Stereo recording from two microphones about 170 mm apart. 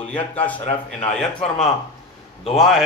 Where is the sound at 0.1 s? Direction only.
10° left (ahead or behind).